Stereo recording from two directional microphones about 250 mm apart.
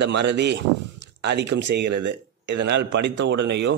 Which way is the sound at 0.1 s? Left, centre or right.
Right.